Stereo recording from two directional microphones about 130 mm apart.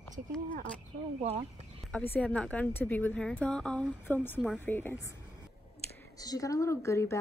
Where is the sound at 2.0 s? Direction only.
10° left (ahead or behind).